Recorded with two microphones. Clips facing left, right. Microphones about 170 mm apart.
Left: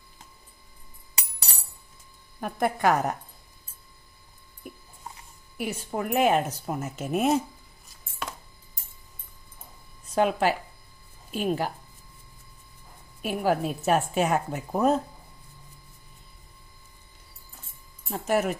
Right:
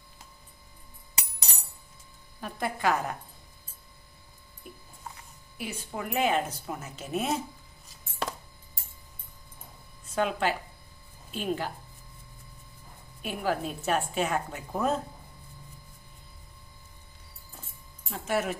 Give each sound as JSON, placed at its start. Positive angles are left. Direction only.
{"t": 2.4, "sound": "speech", "side_deg": 45}
{"t": 5.6, "sound": "speech", "side_deg": 45}
{"t": 8.2, "sound": "music", "side_deg": -35}
{"t": 10.1, "sound": "a woman's voice", "side_deg": 40}
{"t": 13.2, "sound": "a woman's voice", "side_deg": 40}
{"t": 18.2, "sound": "a woman's voice", "side_deg": 40}